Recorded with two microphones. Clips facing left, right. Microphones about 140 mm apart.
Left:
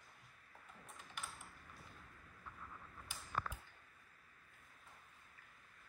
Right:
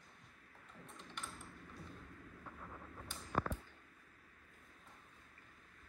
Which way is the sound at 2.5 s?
45° right (ahead or behind).